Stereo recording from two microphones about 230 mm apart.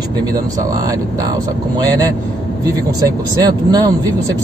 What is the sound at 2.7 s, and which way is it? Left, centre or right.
Speech, centre.